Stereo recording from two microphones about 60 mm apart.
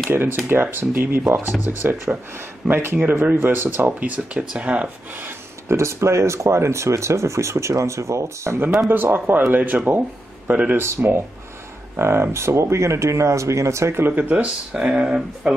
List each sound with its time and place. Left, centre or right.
0.1 s speech: right
4.1 s speech: centre
5.7 s speech: right
8.9 s speech: right
10.8 s speech: right
14.0 s speech: right
14.7 s speech: centre